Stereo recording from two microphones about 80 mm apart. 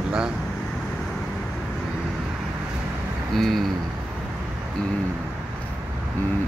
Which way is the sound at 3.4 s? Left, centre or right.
Centre.